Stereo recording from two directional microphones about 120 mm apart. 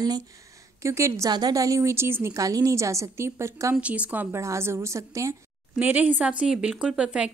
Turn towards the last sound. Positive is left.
turn(degrees=-10)  # may be behind; listen again after turning